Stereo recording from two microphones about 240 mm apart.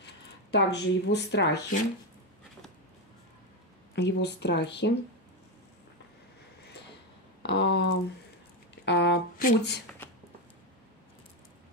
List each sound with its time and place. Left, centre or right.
0.0 s speech: left
3.9 s speech: left
7.4 s a sound: left
8.8 s speech: left